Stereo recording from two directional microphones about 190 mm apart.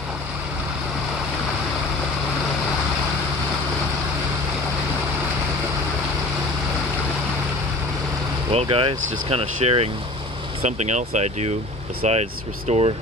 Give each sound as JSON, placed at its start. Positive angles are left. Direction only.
{"t": 8.5, "sound": "speech", "side_deg": -30}